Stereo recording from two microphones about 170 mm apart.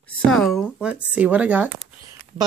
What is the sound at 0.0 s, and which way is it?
Speech, 5° left (ahead or behind).